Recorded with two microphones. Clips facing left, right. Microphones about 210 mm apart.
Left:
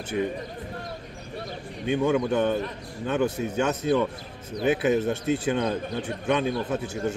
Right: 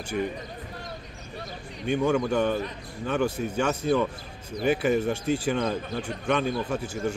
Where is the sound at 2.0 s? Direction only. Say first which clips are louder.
Left 1 dB; 20° left (ahead or behind).